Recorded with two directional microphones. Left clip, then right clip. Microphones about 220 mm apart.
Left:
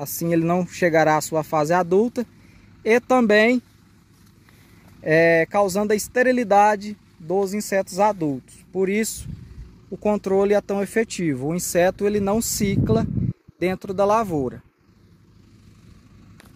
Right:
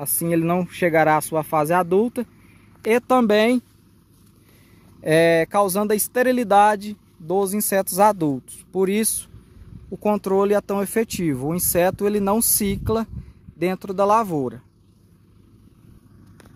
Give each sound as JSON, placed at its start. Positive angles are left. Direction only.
{"t": 0.0, "sound": "speech", "side_deg": -5}
{"t": 5.0, "sound": "speech", "side_deg": -10}